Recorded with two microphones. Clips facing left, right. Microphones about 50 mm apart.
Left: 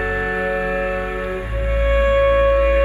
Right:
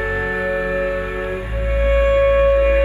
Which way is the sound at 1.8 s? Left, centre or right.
Left.